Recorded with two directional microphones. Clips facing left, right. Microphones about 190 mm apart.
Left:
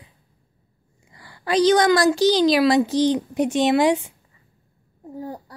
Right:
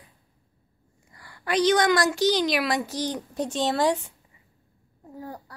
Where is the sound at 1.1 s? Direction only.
30° left (ahead or behind).